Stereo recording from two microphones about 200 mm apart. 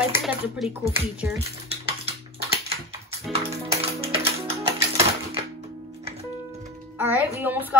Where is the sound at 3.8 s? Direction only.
30° right (ahead or behind).